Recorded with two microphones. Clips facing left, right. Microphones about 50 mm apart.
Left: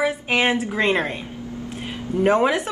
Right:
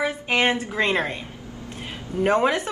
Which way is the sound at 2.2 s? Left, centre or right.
Centre.